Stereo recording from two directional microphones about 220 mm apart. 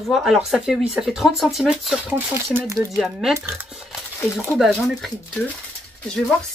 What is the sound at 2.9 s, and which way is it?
Speech, centre (ahead or behind).